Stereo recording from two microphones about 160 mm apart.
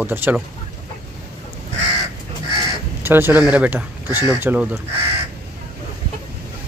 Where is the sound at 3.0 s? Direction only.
15° right (ahead or behind).